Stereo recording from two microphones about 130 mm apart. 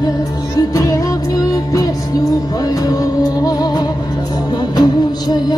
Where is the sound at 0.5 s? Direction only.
25° left (ahead or behind).